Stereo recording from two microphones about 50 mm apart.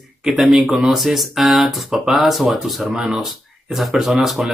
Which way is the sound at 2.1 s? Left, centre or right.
Centre.